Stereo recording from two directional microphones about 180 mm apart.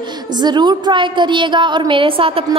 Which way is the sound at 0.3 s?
25° right (ahead or behind).